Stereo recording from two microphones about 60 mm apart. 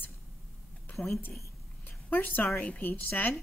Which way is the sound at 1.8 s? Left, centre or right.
Left.